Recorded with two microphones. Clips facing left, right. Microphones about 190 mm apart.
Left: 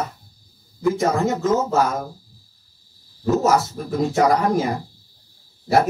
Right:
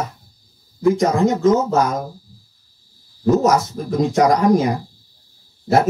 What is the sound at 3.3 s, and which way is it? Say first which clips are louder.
Speech: right 3 dB; 20° right (ahead or behind).